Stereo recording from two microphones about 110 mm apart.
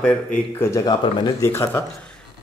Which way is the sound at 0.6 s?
25° left (ahead or behind).